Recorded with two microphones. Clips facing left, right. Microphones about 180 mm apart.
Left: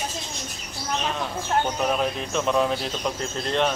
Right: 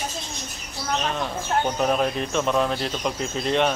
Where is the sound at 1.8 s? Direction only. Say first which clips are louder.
Right 2 dB; centre (ahead or behind).